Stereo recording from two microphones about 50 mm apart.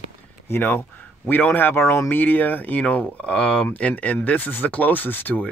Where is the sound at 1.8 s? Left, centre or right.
Left.